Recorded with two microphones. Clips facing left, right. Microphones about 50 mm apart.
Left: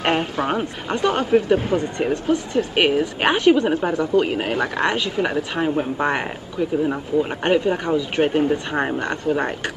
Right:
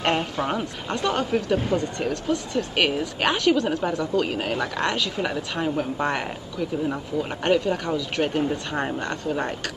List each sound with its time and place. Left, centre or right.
0.0 s a woman's voice: left